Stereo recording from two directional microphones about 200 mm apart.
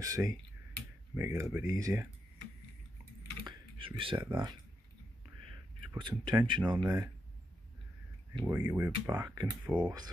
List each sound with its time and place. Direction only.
0.0 s speech: 15° right (ahead or behind)
3.4 s a sound: 25° right (ahead or behind)
4.3 s speech: 20° right (ahead or behind)
5.9 s speech: 25° right (ahead or behind)
8.5 s speech: 10° right (ahead or behind)